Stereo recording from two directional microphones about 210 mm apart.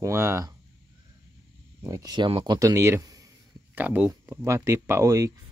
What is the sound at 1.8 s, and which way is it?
Speech, 15° right (ahead or behind).